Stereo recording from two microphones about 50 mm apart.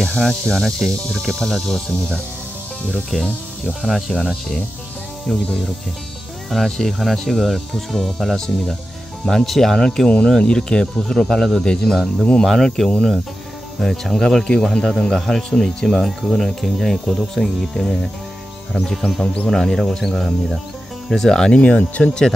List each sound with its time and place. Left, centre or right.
0.0 s speech: centre
11.6 s speech: centre
11.9 s speech: centre
19.2 s speech: centre
21.5 s speech: left